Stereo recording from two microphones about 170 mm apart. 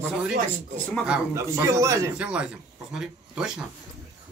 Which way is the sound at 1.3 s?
15° right (ahead or behind).